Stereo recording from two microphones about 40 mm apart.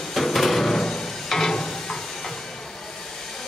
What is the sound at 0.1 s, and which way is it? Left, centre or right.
Music, centre.